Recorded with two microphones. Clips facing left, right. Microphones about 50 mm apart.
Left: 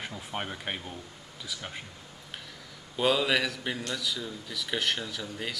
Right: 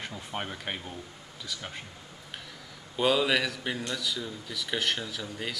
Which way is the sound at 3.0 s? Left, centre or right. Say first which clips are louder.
Right 1 dB; centre.